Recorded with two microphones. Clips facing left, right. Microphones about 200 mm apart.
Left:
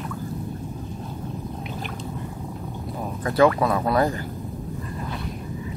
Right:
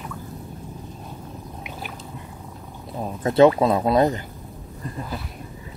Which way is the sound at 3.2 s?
25° right (ahead or behind).